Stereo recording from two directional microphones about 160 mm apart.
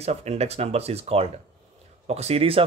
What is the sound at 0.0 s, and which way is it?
Speech, 40° right (ahead or behind).